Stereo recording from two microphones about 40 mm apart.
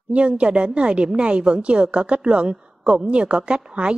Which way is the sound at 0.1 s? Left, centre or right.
Right.